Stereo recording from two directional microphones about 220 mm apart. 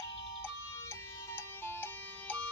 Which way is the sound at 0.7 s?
10° left (ahead or behind).